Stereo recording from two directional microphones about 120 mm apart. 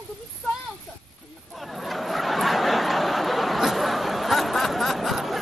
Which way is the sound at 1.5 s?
Centre (ahead or behind).